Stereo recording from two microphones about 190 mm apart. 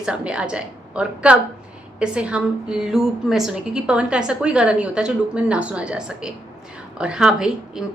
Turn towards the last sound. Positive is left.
turn(degrees=-5)  # may be behind; listen again after turning